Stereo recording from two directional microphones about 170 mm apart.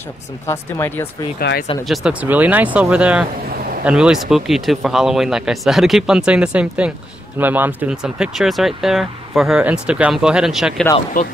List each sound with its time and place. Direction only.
0.5 s speech: 15° left (ahead or behind)
1.4 s speech: 70° left (ahead or behind)
1.9 s speech: 5° right (ahead or behind)
11.2 s speech: 50° left (ahead or behind)